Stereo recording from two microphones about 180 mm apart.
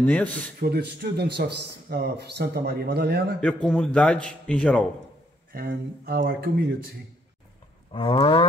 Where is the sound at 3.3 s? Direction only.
5° left (ahead or behind).